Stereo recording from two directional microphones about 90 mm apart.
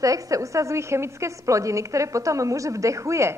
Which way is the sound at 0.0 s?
40° right (ahead or behind).